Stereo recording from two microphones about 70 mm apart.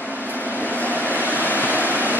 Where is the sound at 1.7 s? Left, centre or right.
Left.